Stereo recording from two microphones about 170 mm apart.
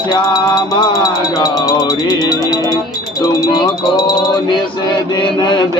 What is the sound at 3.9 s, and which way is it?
Speech, 25° left (ahead or behind).